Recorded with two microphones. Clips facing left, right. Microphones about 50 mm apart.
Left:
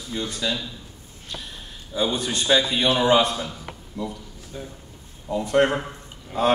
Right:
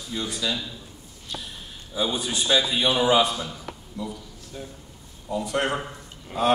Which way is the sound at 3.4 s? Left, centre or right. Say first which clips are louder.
Left 1 dB; left.